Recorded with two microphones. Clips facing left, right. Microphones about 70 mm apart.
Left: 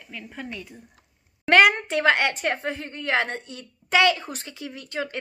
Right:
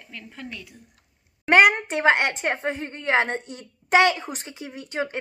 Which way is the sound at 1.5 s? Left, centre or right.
Centre.